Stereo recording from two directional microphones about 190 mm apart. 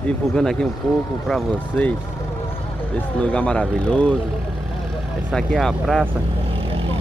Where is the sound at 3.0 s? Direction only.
10° left (ahead or behind).